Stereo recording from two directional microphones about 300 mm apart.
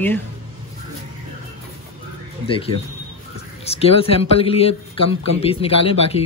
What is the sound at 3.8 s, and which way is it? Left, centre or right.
A man's voice, centre.